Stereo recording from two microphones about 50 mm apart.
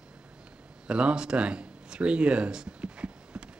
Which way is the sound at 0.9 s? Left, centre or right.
Right.